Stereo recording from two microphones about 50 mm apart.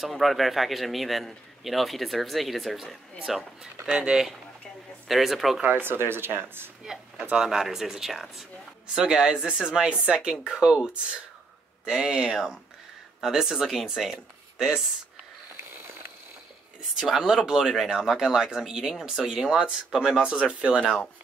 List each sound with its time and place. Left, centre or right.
0.0 s a man's voice: centre
5.7 s speech: right
6.8 s a sound: centre
7.4 s a man's voice: centre
8.9 s speech: centre
11.9 s speech: centre
17.1 s speech: centre